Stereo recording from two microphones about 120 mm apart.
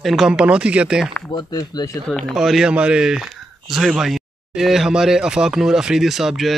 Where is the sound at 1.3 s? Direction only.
30° left (ahead or behind).